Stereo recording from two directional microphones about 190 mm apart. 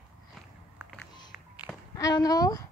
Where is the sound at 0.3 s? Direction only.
Centre (ahead or behind).